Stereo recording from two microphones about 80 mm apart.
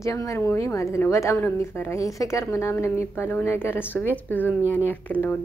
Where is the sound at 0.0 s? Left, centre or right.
Left.